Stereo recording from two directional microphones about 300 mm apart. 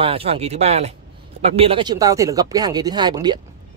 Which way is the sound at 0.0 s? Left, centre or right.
Centre.